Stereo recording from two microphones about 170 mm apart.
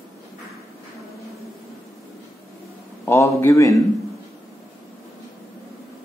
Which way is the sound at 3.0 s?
15° left (ahead or behind).